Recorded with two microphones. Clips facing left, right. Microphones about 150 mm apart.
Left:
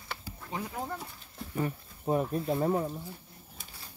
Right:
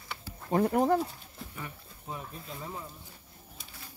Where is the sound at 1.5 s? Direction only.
45° left (ahead or behind).